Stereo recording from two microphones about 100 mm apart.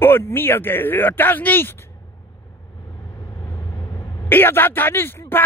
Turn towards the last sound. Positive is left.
turn(degrees=20)  # may be behind; listen again after turning